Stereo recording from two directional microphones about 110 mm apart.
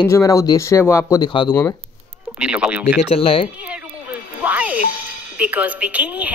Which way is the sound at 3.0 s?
60° left (ahead or behind).